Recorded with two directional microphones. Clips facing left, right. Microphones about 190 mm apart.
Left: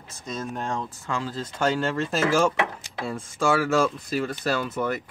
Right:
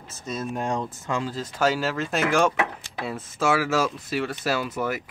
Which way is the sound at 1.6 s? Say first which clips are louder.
Even; 5° right (ahead or behind).